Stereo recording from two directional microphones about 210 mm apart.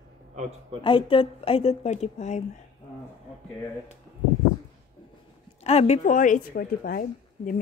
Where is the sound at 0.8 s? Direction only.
25° left (ahead or behind).